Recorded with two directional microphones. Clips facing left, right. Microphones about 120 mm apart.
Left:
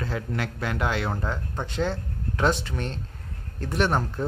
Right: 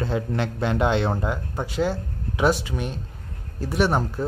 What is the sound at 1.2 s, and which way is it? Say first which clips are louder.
A man's voice: right 3 dB; 10° right (ahead or behind).